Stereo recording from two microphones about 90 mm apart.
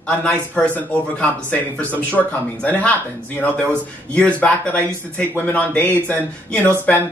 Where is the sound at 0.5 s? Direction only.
15° left (ahead or behind).